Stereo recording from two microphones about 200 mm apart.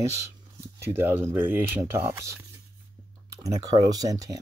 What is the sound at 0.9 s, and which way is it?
Speech, 10° right (ahead or behind).